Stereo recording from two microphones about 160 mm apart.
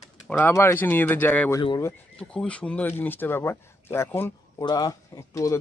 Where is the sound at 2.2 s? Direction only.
5° left (ahead or behind).